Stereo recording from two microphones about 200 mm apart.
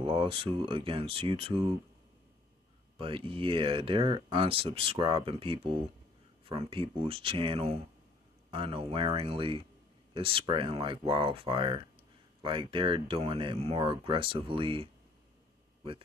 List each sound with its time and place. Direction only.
0.0 s speech: 25° right (ahead or behind)
3.0 s speech: 25° right (ahead or behind)